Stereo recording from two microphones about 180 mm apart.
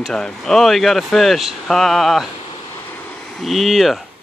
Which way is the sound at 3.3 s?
Centre (ahead or behind).